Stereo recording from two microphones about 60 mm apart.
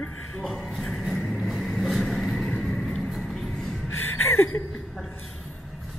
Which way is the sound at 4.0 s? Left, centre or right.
Left.